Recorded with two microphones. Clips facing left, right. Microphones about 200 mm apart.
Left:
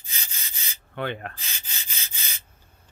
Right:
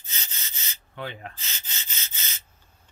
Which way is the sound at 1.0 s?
65° left (ahead or behind).